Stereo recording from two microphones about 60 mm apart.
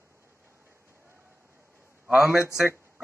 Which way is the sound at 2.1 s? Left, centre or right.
Centre.